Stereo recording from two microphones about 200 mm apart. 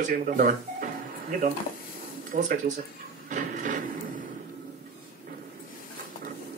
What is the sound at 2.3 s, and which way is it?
Speech, 40° right (ahead or behind).